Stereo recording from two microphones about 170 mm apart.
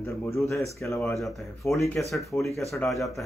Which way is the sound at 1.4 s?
Centre (ahead or behind).